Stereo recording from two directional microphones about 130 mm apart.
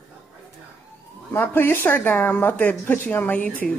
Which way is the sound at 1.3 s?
15° left (ahead or behind).